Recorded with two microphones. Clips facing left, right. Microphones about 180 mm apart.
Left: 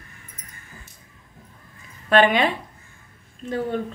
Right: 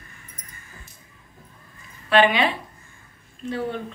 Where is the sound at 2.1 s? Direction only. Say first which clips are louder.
Left 1 dB; 45° left (ahead or behind).